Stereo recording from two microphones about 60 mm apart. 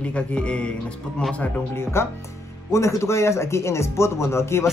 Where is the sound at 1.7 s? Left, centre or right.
Left.